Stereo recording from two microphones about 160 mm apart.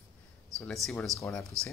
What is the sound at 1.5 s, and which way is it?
Speech, 15° right (ahead or behind).